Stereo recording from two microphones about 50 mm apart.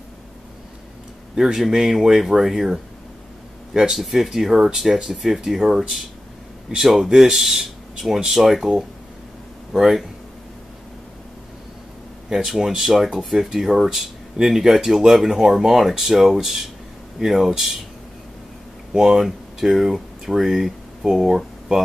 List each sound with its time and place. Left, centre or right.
1.3 s speech: centre
12.3 s speech: centre
18.9 s speech: centre